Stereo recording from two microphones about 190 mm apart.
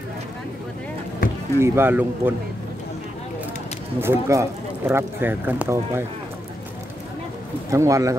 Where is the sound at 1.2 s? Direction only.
45° left (ahead or behind).